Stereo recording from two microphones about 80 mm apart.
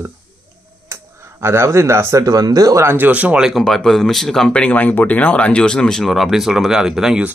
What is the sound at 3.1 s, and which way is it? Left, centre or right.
Speech, centre.